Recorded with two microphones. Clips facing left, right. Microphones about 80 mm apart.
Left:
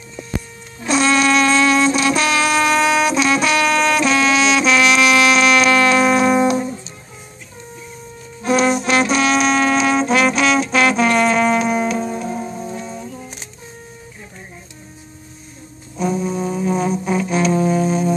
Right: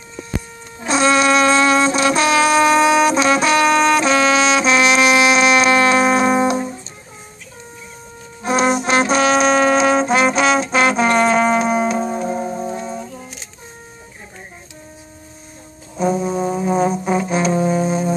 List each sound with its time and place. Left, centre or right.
0.7 s brass instrument: right
8.4 s brass instrument: right
8.8 s music: right
16.0 s brass instrument: right